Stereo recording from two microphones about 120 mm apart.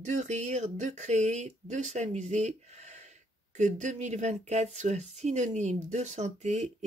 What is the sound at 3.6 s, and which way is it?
Speech, 90° right.